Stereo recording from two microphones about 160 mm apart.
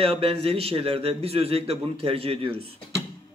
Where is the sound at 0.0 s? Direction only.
35° right (ahead or behind).